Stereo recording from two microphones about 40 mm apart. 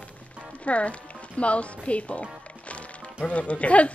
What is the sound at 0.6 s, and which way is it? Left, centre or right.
A woman's voice, left.